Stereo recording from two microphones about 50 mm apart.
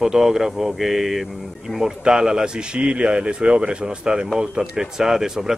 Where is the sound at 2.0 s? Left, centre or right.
Centre.